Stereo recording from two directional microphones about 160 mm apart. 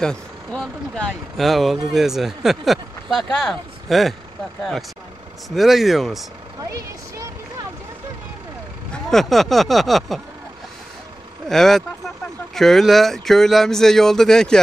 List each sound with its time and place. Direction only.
0.0 s speech: 5° left (ahead or behind)
5.5 s speech: centre (ahead or behind)
6.6 s a sound: 20° right (ahead or behind)
8.9 s speech: centre (ahead or behind)
11.4 s speech: centre (ahead or behind)